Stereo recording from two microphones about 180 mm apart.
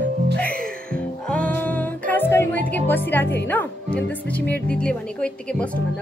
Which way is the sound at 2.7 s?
10° left (ahead or behind).